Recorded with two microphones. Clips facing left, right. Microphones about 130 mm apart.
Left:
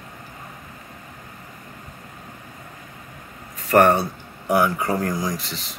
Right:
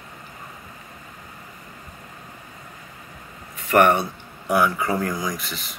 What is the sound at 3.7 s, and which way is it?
Speech, 35° left (ahead or behind).